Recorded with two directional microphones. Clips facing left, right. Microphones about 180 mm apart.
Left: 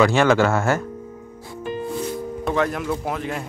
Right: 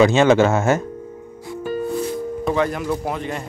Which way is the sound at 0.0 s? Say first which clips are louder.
Right 3 dB; 20° right (ahead or behind).